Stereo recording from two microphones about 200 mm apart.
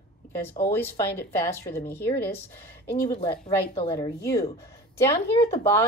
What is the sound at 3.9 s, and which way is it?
Speech, 15° left (ahead or behind).